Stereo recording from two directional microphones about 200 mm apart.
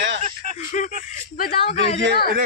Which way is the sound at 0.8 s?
40° left (ahead or behind).